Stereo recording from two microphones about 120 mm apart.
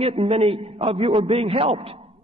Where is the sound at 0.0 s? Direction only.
55° right (ahead or behind).